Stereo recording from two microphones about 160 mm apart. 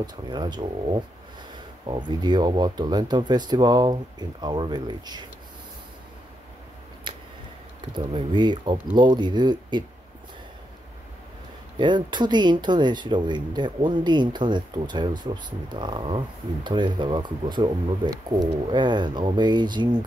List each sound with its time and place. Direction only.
0.0 s speech: 25° right (ahead or behind)
7.9 s speech: 30° right (ahead or behind)
11.8 s speech: 30° right (ahead or behind)